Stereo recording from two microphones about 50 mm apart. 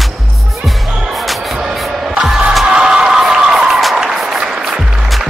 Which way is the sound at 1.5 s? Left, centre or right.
Centre.